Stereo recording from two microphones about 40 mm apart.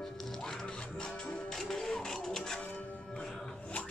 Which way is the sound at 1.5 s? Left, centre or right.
Centre.